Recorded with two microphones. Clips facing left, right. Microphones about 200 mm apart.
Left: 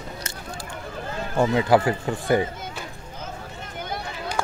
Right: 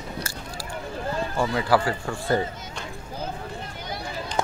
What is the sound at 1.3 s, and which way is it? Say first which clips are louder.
Speech: left 5 dB; 20° left (ahead or behind).